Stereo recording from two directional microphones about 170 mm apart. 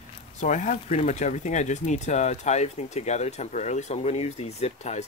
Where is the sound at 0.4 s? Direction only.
45° left (ahead or behind).